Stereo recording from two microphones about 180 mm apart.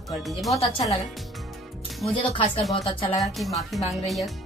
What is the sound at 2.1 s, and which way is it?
Speech, 30° left (ahead or behind).